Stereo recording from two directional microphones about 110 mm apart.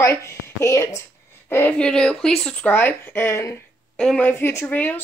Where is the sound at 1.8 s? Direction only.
5° left (ahead or behind); by 3.5 s 25° left (ahead or behind).